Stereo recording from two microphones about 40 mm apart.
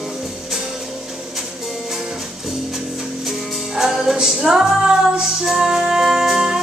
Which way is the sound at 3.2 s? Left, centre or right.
Centre.